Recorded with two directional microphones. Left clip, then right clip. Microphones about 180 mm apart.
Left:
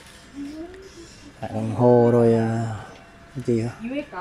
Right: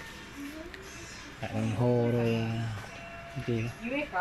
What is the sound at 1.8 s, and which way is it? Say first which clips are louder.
Speech: left 13 dB; 35° left (ahead or behind).